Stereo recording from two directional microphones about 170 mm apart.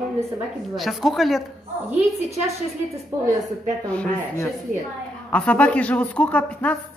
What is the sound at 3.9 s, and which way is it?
Speech, 5° left (ahead or behind).